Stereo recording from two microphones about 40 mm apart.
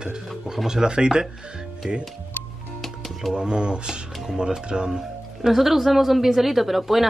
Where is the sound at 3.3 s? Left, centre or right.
Right.